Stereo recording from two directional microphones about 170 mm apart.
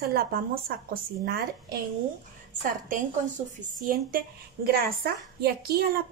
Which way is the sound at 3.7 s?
55° right (ahead or behind).